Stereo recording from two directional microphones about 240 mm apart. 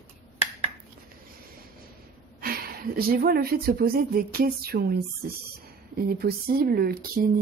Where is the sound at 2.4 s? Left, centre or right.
Right.